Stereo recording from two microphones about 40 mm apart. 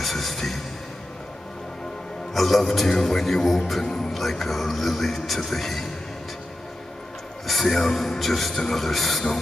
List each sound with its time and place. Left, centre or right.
0.0 s a sound: centre
2.3 s a man's voice: centre
7.4 s a man's voice: centre